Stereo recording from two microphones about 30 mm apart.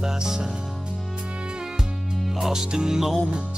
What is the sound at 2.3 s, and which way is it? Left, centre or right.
Speech, centre.